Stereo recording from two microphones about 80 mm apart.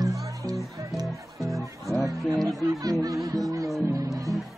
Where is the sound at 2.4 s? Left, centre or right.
Right.